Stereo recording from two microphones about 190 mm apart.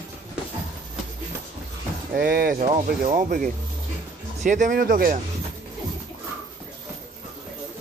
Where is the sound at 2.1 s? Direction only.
55° right (ahead or behind).